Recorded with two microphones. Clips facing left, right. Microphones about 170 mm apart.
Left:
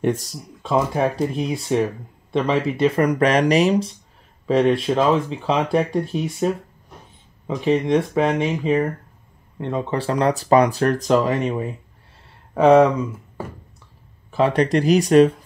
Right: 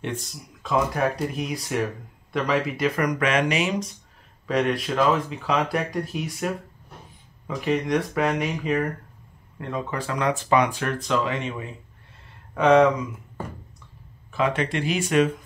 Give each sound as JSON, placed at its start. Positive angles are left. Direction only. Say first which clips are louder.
{"t": 0.0, "sound": "speech", "louder": "left 9 dB", "side_deg": 40}
{"t": 14.3, "sound": "speech", "louder": "left 7 dB", "side_deg": 35}